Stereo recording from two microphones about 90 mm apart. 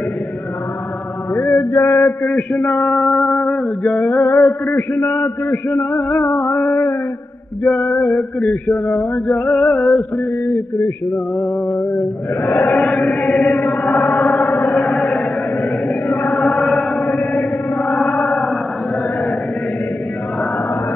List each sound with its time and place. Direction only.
1.3 s mantra: 5° left (ahead or behind)
1.6 s mantra: 40° left (ahead or behind)
2.2 s male singing: 5° left (ahead or behind)
11.9 s male singing: centre (ahead or behind)
12.6 s chant: 5° left (ahead or behind)
16.3 s chant: centre (ahead or behind)